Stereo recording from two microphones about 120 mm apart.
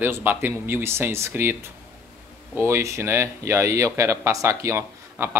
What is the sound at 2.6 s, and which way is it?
Speech, 20° right (ahead or behind).